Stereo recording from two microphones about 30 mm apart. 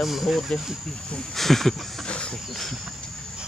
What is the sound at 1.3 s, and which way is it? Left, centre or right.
Speech, centre.